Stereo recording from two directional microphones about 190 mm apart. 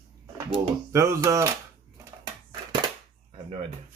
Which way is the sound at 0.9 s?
15° right (ahead or behind).